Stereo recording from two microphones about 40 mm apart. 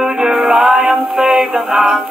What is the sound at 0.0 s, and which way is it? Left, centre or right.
Music, centre.